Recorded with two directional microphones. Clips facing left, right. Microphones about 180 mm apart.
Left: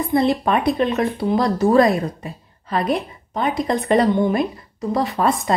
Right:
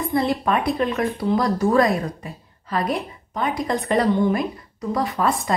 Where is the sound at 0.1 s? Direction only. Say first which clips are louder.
Left 4 dB; 25° left (ahead or behind).